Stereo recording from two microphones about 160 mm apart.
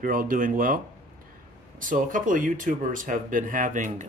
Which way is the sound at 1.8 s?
55° right (ahead or behind).